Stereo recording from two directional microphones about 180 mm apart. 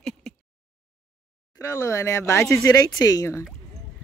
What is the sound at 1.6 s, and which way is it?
Speech, 15° left (ahead or behind).